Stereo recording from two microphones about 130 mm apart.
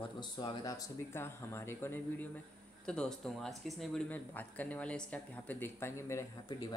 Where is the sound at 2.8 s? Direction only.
5° left (ahead or behind).